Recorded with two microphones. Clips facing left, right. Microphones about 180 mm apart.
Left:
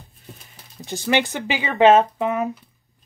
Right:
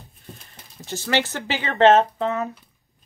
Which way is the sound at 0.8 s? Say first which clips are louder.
Left 3 dB; 15° left (ahead or behind).